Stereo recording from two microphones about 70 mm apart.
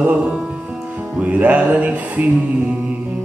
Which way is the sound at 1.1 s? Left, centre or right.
Centre.